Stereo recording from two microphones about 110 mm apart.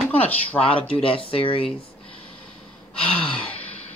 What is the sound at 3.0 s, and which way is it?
Gasp, 55° left (ahead or behind).